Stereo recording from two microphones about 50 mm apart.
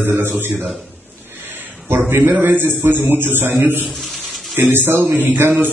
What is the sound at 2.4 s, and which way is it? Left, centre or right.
Speech, right.